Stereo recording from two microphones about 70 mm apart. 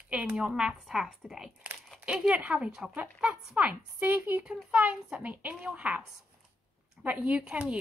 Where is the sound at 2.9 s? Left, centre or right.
Right.